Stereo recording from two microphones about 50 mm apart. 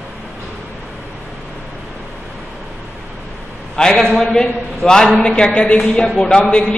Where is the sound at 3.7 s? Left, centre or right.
Centre.